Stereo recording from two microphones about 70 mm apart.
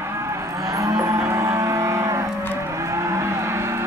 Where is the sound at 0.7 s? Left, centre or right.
Right.